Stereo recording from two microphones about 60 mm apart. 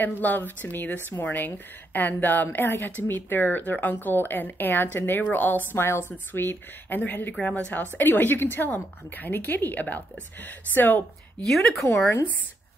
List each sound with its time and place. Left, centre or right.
0.0 s a woman's voice: left
5.7 s a woman's voice: left
11.4 s speech: centre